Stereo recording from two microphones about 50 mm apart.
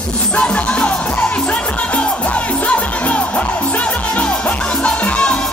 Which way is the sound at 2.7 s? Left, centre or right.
Left.